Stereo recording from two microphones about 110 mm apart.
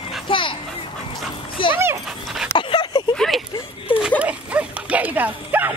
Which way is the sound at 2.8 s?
45° left (ahead or behind).